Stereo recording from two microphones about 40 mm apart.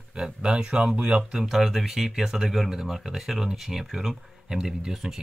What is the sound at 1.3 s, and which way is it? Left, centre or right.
Speech, centre.